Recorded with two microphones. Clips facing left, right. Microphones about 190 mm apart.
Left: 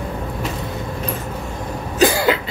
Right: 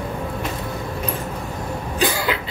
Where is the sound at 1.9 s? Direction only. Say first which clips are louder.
Left 7 dB; 40° left (ahead or behind).